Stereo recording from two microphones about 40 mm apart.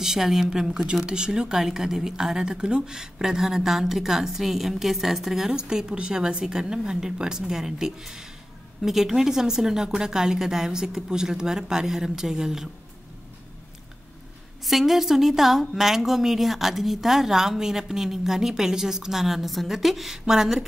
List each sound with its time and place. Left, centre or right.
0.0 s a woman's voice: centre
1.0 s a woman's voice: right
5.5 s a woman's voice: centre
14.6 s a woman's voice: centre